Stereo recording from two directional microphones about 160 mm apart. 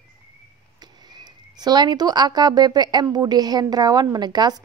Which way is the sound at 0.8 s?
25° right (ahead or behind).